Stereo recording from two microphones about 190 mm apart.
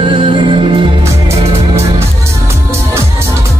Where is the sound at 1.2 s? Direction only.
15° right (ahead or behind).